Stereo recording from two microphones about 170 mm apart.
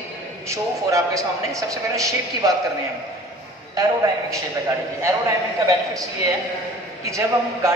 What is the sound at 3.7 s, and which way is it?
Speech, 20° right (ahead or behind).